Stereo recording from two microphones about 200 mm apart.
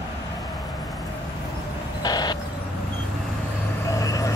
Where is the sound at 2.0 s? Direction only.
20° left (ahead or behind).